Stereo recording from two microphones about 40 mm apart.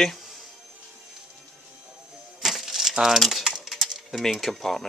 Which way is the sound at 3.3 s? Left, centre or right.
Centre.